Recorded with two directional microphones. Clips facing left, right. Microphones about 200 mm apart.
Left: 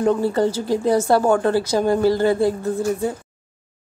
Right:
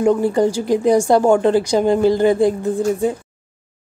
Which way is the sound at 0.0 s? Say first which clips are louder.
Right 3 dB; 15° right (ahead or behind).